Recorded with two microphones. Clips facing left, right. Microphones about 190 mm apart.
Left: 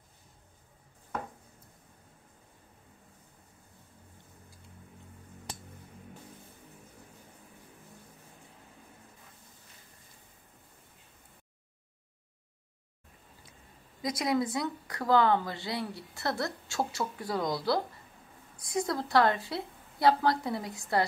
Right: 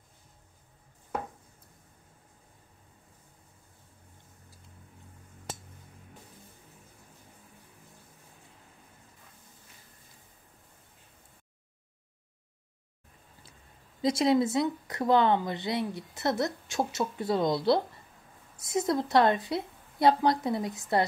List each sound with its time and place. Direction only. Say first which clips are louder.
14.0 s speech: right 5 dB; 25° right (ahead or behind)